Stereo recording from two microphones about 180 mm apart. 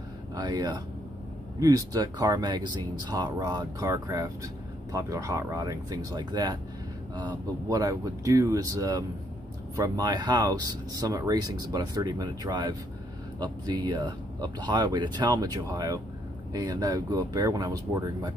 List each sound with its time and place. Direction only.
0.4 s speech: 20° right (ahead or behind)